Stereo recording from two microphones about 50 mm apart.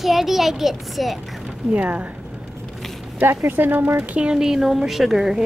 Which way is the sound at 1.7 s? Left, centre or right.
Right.